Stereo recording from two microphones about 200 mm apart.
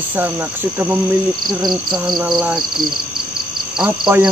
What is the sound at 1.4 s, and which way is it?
Speech, 20° right (ahead or behind).